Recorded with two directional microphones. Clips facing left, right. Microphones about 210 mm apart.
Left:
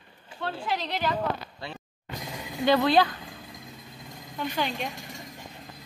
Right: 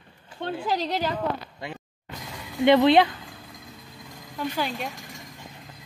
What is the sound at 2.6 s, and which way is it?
Speech, 20° right (ahead or behind).